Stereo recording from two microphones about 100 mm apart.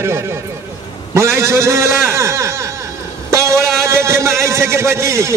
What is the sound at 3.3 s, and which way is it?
Vehicle, 30° right (ahead or behind).